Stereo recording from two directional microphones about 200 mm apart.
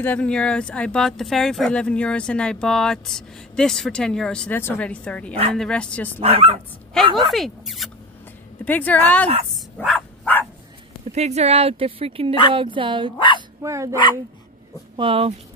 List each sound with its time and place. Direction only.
0.0 s speech: 5° left (ahead or behind)
6.2 s speech: 30° right (ahead or behind)
7.2 s speech: centre (ahead or behind)
9.8 s dog: centre (ahead or behind)
11.1 s a woman's voice: 35° right (ahead or behind); by 13.8 s 15° right (ahead or behind)
15.0 s a woman's voice: 30° right (ahead or behind)